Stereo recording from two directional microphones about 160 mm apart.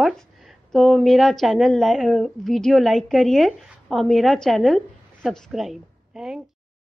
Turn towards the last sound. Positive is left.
turn(degrees=-5)  # may be behind; listen again after turning